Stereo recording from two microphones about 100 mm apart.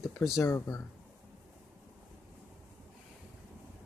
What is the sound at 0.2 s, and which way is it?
Speech, 20° left (ahead or behind).